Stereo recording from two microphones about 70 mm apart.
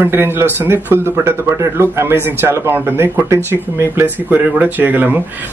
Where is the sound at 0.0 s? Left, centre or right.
Right.